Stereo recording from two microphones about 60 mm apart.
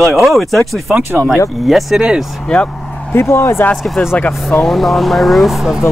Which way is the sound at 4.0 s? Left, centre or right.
Centre.